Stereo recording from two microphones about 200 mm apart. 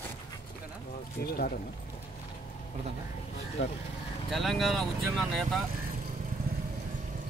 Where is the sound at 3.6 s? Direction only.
70° left (ahead or behind).